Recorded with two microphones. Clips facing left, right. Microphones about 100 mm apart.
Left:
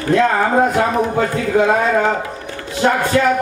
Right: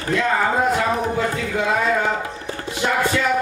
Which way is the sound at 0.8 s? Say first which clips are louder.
Left 5 dB; 45° left (ahead or behind).